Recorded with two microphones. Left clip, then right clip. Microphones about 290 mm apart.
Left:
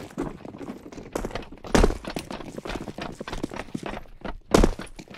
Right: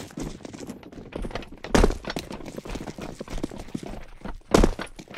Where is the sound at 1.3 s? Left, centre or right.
Centre.